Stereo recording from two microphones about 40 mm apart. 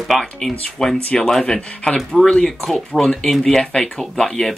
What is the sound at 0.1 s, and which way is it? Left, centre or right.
Speech, centre.